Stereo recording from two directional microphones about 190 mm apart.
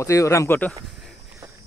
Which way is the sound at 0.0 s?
15° left (ahead or behind).